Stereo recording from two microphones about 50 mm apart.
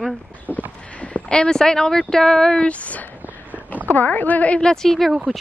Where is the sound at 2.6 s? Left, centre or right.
Left.